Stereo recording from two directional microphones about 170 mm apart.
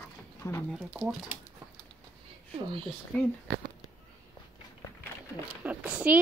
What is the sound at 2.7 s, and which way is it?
Speech, 30° right (ahead or behind).